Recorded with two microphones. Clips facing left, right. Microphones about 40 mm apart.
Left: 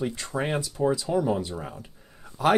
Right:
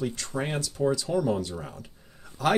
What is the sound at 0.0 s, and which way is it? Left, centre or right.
Speech, centre.